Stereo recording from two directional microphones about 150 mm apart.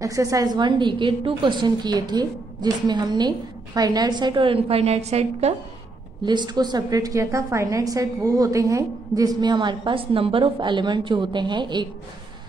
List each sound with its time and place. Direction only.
0.0 s a woman's voice: 20° right (ahead or behind); by 5.5 s 45° right (ahead or behind)
6.2 s a woman's voice: 30° right (ahead or behind)